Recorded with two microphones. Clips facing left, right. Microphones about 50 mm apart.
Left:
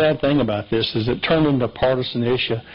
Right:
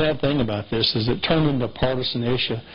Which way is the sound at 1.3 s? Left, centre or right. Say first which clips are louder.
Left 4 dB; centre.